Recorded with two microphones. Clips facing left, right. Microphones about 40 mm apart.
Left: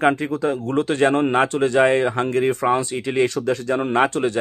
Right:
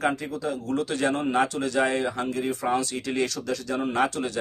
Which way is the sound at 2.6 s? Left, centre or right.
Left.